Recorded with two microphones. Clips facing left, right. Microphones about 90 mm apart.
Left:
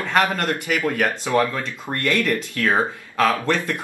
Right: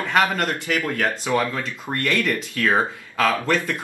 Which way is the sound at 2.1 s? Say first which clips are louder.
Left 1 dB; 15° right (ahead or behind).